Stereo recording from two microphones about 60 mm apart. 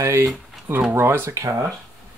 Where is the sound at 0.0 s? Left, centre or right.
Right.